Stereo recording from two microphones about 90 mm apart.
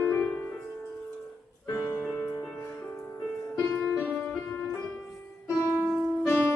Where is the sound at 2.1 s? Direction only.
20° left (ahead or behind).